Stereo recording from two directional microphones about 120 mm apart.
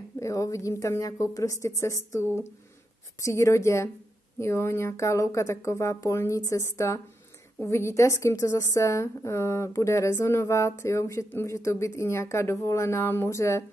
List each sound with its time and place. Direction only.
0.2 s a woman's voice: 25° left (ahead or behind)